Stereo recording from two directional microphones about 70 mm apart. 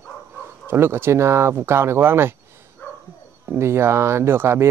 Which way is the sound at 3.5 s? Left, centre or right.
Right.